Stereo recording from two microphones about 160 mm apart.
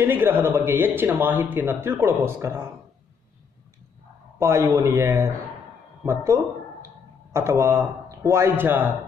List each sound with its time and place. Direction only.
0.0 s speech: 15° right (ahead or behind)
4.4 s a man's voice: 15° right (ahead or behind)